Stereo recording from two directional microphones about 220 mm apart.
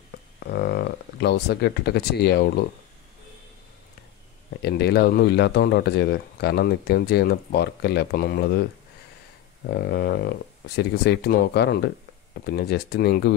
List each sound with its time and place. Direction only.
0.5 s speech: 45° left (ahead or behind)
4.6 s speech: 50° left (ahead or behind)
9.7 s speech: 45° left (ahead or behind)